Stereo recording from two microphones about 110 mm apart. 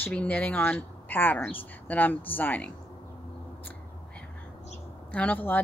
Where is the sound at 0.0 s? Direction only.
15° left (ahead or behind).